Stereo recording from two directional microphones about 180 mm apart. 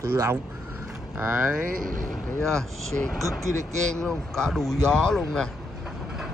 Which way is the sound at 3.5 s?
40° right (ahead or behind).